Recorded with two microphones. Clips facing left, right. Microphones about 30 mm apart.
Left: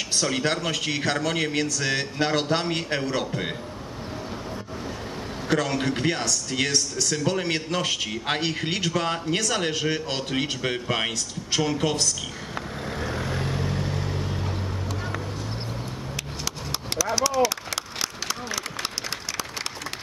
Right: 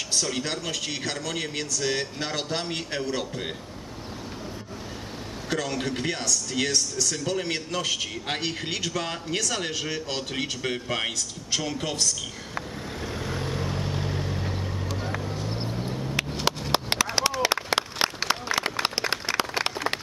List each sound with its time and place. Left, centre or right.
0.1 s speech: centre
5.5 s a man's voice: centre
13.3 s vehicle: centre
16.2 s a sound: right